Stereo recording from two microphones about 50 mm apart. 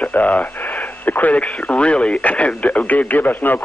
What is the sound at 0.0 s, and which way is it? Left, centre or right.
Speech, left.